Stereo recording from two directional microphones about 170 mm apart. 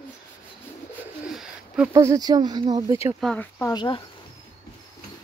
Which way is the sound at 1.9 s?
20° right (ahead or behind).